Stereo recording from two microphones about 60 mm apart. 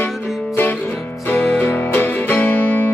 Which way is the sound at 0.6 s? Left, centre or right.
Left.